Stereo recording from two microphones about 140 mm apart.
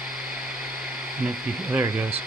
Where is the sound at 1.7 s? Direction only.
10° right (ahead or behind).